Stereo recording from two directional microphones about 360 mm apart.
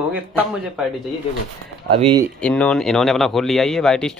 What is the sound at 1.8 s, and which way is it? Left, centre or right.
Speech, centre.